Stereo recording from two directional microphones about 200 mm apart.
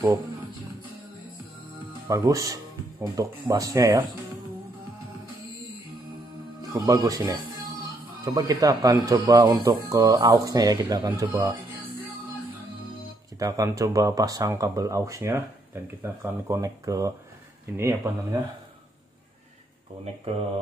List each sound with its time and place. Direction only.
2.0 s speech: 15° right (ahead or behind)
6.7 s speech: 15° right (ahead or behind)
13.4 s speech: 15° right (ahead or behind)